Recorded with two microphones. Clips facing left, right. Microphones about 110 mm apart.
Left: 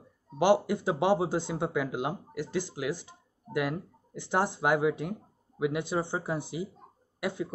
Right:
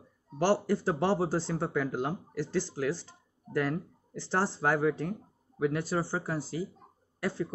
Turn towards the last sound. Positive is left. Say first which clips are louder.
# even
turn(degrees=15)  # may be behind; listen again after turning